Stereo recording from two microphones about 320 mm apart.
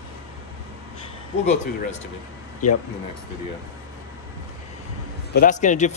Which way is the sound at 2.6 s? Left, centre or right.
Left.